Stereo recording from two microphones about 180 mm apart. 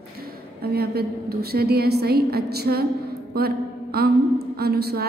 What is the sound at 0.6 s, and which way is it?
A woman's voice, 60° right (ahead or behind).